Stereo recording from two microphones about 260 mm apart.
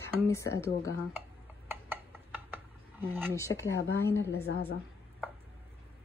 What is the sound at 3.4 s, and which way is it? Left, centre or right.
Speech, centre.